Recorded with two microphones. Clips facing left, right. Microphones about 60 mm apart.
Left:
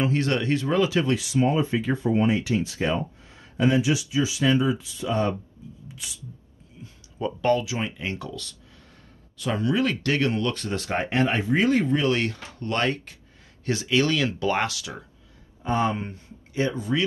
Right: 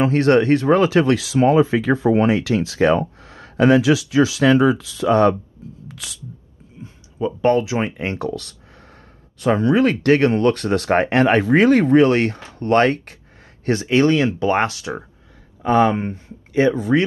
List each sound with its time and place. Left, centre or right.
0.0 s speech: right
1.1 s speech: right
5.9 s a sound: right
6.8 s a sound: right
7.4 s speech: right
15.6 s speech: right
16.1 s speech: right